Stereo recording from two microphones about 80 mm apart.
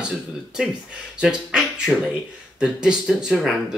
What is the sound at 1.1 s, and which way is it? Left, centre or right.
Speech, centre.